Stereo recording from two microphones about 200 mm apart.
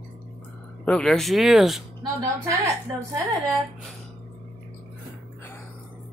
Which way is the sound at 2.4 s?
15° right (ahead or behind).